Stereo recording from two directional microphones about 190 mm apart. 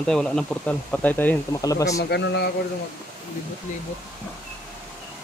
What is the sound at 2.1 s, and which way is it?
Speech, 60° left (ahead or behind).